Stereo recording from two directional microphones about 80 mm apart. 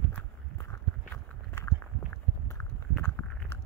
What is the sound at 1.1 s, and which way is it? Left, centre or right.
Walk, left.